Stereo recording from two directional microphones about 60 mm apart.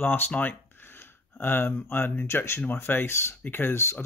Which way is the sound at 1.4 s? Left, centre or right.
Left.